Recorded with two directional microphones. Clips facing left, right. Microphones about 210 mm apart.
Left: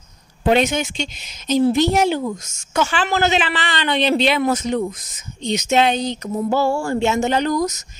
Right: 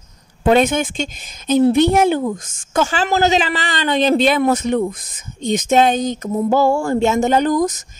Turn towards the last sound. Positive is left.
turn(degrees=-50)  # may be behind; listen again after turning